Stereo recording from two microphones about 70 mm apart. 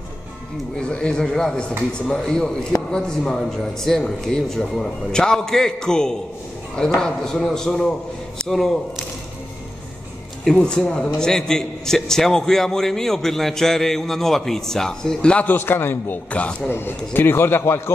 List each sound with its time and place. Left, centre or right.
0.7 s a man's voice: centre
10.4 s a man's voice: centre
15.4 s a man's voice: left
16.3 s a man's voice: centre
16.7 s a man's voice: left